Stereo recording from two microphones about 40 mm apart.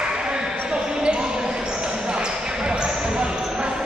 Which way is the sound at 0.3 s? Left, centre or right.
Right.